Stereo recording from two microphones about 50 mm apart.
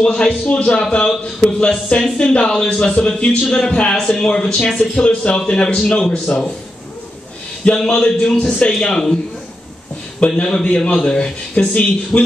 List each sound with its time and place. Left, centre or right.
0.0 s a man's voice: centre
7.6 s a man's voice: centre
8.7 s speech: centre
10.2 s a man's voice: left